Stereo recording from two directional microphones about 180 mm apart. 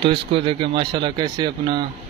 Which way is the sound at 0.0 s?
30° right (ahead or behind).